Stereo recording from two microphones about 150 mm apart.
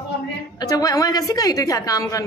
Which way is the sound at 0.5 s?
25° left (ahead or behind).